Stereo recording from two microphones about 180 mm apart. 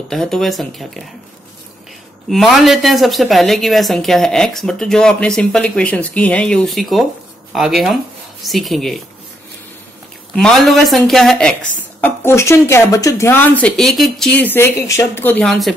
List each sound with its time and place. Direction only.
0.1 s a woman's voice: centre (ahead or behind)
2.2 s a woman's voice: centre (ahead or behind)
10.3 s a woman's voice: 5° left (ahead or behind)